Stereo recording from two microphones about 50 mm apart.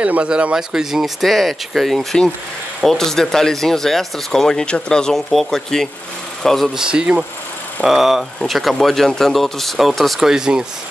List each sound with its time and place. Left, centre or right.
0.0 s speech: right
0.6 s speech: centre
1.2 s speech: centre
5.1 s speech: centre
6.8 s speech: centre
7.8 s speech: centre
10.2 s speech: centre